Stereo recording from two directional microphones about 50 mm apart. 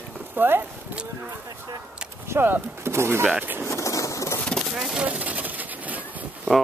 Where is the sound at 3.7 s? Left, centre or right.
Left.